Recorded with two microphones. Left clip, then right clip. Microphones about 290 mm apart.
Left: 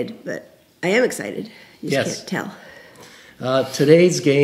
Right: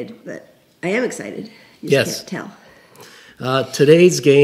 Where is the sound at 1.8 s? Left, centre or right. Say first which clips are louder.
Right 5 dB; right.